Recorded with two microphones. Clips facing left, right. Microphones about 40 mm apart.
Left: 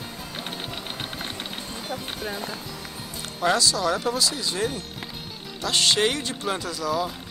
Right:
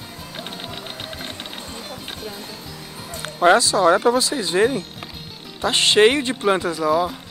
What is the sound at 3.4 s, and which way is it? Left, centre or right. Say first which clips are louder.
Speech: right 8 dB; right.